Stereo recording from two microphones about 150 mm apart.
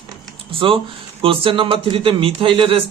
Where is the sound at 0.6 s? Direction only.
35° right (ahead or behind).